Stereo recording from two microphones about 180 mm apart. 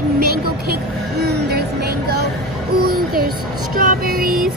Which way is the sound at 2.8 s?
55° right (ahead or behind).